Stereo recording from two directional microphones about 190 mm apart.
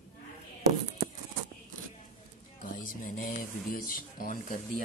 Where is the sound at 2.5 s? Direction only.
45° left (ahead or behind).